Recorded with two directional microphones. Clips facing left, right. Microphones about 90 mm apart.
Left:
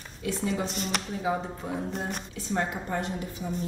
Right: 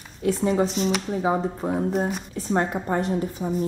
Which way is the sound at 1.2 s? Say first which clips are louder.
Right 5 dB; 35° right (ahead or behind).